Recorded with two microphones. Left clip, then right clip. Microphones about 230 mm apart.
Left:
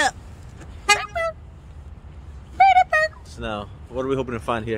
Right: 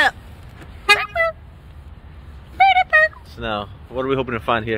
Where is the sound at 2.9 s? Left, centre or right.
Left.